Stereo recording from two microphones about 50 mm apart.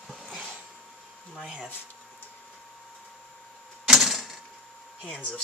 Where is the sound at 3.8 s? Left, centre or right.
Centre.